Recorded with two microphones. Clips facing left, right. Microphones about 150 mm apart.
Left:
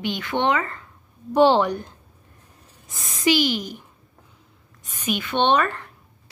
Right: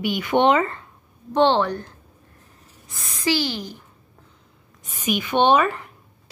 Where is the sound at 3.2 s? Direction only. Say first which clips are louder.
Left 3 dB; 15° left (ahead or behind).